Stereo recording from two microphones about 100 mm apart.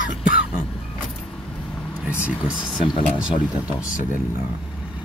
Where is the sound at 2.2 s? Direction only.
10° right (ahead or behind).